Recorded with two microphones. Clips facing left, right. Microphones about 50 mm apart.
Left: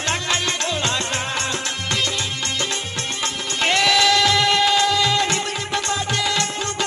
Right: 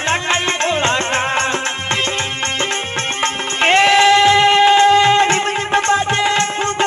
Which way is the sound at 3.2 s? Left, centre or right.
Right.